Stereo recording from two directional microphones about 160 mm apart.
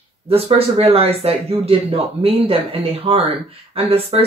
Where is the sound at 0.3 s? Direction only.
40° right (ahead or behind).